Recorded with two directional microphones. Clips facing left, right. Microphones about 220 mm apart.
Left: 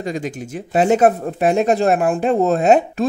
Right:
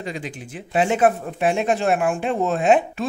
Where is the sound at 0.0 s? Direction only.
45° left (ahead or behind).